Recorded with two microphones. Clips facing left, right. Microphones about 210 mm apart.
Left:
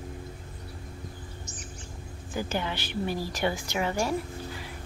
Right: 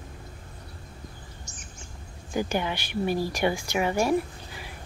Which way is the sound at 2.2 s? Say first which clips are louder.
Right 4 dB; 15° right (ahead or behind).